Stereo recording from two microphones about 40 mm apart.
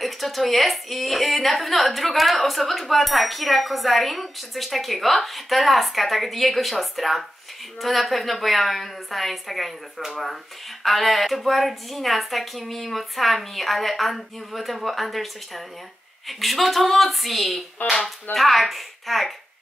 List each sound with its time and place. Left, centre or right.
0.0 s a woman's voice: centre
17.8 s a sound: left
18.3 s a woman's voice: centre